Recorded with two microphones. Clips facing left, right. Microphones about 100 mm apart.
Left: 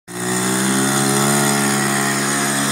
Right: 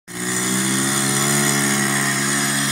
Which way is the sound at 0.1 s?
15° left (ahead or behind).